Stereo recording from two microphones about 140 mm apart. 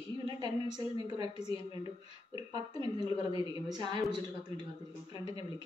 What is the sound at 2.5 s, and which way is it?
A woman's voice, 30° right (ahead or behind).